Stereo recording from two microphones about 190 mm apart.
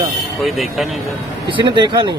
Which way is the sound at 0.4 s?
Centre (ahead or behind).